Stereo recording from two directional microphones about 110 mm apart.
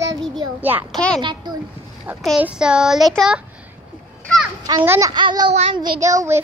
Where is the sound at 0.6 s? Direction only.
15° right (ahead or behind).